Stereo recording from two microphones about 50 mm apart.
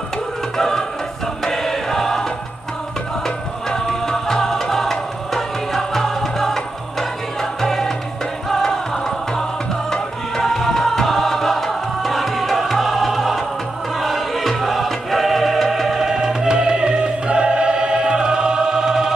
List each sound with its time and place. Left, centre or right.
0.6 s music: centre
1.4 s choir: centre
3.3 s music: centre